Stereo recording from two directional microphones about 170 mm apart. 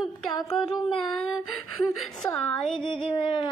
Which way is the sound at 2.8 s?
30° left (ahead or behind).